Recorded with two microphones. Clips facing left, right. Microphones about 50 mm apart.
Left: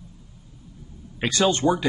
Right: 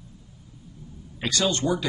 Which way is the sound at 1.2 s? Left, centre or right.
Left.